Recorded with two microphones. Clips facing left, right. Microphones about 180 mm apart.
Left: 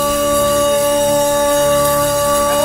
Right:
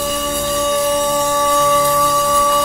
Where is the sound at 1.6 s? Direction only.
55° left (ahead or behind).